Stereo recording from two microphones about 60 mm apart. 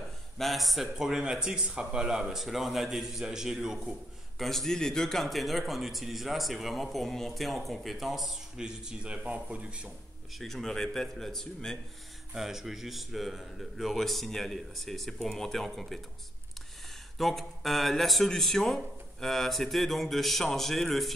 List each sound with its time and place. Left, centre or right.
0.4 s speech: centre
4.4 s speech: centre
8.5 s speech: centre
10.3 s a man's voice: centre
12.4 s speech: centre
17.2 s speech: centre